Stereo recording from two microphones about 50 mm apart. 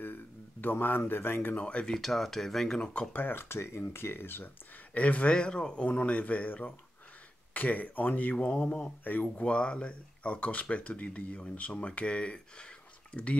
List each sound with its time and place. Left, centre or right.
0.0 s a sound: left
1.5 s speech: left
2.0 s speech: centre
3.1 s speech: left
3.5 s speech: left
4.9 s speech: left
5.3 s speech: centre
9.0 s speech: left
9.4 s speech: left